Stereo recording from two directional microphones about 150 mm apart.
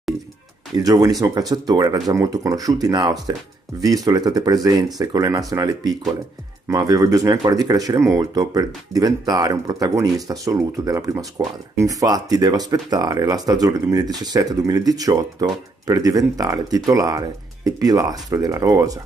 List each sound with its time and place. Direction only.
0.7 s speech: 25° right (ahead or behind)